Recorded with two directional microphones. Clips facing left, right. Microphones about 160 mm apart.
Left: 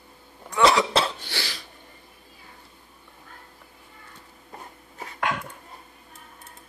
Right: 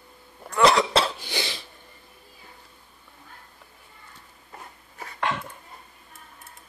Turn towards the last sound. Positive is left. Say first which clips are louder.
# even
turn(degrees=5)  # may be behind; listen again after turning